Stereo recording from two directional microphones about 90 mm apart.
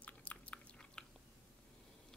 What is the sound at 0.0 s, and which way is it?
Chewing, 15° left (ahead or behind).